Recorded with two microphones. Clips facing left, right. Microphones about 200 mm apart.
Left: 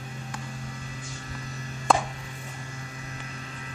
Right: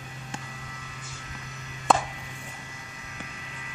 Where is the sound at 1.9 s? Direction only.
Centre (ahead or behind).